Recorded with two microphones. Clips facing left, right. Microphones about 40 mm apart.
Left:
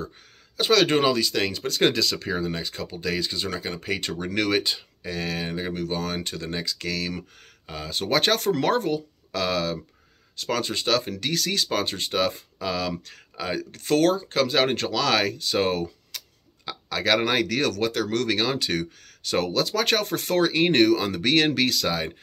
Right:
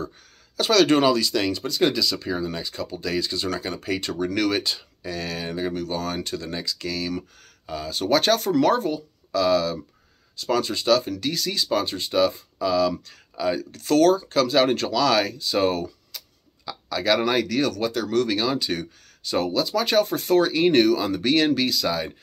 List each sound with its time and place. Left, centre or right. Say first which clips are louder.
0.6 s speech: right 2 dB; left
1.7 s speech: left 1 dB; left; by 3.8 s centre
4.0 s speech: right 4 dB; left
4.6 s speech: even; left
5.8 s speech: right 1 dB; left
21.8 s speech: right 1 dB; left